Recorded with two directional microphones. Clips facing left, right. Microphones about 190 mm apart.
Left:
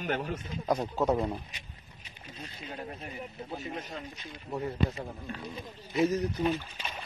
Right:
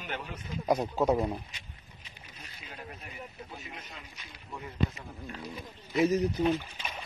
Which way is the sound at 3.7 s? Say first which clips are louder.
Left 8 dB; 40° left (ahead or behind).